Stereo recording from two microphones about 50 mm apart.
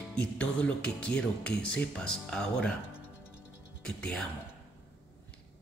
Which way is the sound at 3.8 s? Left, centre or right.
Centre.